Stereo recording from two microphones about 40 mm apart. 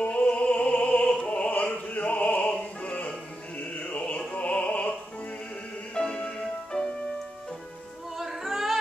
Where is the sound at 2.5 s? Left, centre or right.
Left.